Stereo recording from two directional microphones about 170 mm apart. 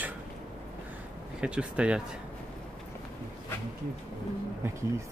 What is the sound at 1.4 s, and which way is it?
Speech, 5° right (ahead or behind).